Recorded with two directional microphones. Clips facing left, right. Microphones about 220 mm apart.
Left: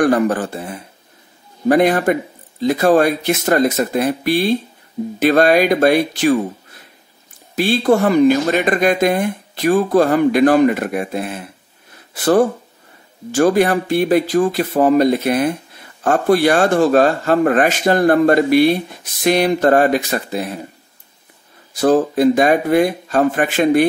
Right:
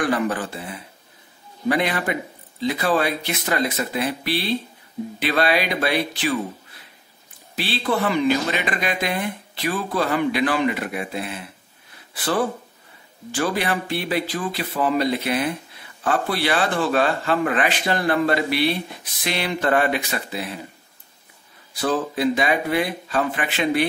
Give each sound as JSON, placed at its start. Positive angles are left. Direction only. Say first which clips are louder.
{"t": 0.0, "sound": "speech", "louder": "left 8 dB", "side_deg": 45}
{"t": 7.5, "sound": "speech", "louder": "left 9 dB", "side_deg": 45}
{"t": 21.7, "sound": "speech", "louder": "left 9 dB", "side_deg": 45}